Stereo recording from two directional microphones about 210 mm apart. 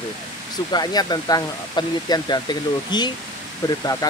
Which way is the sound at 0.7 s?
20° left (ahead or behind).